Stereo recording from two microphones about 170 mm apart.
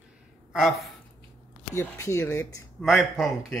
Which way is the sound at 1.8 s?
15° left (ahead or behind).